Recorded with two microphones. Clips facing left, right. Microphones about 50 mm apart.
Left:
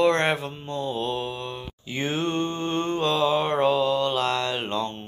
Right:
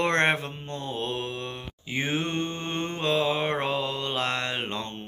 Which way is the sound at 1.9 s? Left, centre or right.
Right.